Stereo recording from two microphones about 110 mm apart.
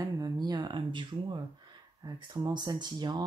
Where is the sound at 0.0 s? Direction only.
35° right (ahead or behind).